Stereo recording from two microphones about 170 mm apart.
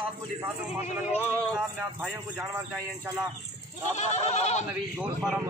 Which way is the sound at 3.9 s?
40° left (ahead or behind).